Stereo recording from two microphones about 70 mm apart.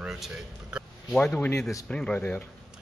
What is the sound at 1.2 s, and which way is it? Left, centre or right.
Speech, left.